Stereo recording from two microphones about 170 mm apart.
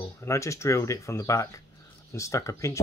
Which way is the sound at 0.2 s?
15° left (ahead or behind).